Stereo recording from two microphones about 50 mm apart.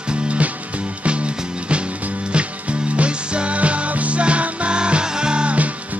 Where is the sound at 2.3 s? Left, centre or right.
Right.